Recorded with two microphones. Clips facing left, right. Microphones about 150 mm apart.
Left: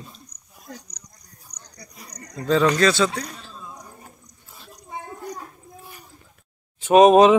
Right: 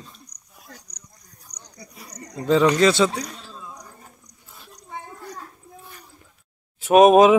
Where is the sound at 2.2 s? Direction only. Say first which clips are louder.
Right 1 dB; 20° right (ahead or behind).